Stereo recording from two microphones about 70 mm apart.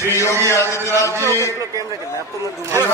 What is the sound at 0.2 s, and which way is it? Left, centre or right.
Speech, left.